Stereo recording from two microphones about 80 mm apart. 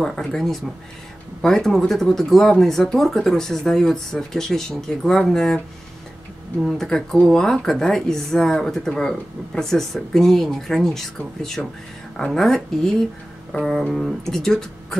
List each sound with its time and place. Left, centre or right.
0.0 s speech: centre
6.6 s speech: centre